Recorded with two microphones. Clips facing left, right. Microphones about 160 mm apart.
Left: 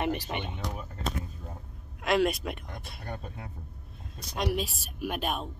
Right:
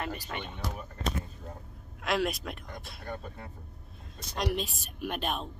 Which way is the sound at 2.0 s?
Centre (ahead or behind).